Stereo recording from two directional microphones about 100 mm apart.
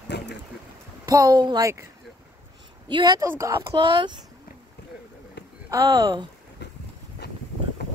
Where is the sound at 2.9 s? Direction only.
50° right (ahead or behind).